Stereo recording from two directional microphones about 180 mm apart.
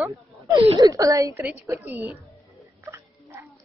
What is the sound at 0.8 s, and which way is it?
A woman's voice, 20° right (ahead or behind).